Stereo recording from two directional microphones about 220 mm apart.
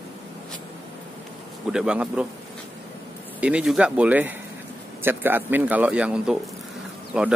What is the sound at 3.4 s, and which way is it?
A man's voice, 5° right (ahead or behind).